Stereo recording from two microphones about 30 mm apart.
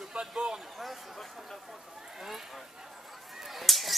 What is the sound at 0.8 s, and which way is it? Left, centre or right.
Speech, centre.